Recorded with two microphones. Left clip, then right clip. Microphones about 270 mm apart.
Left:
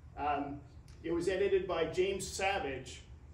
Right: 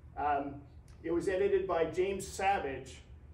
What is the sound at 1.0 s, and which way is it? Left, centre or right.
A man's voice, centre.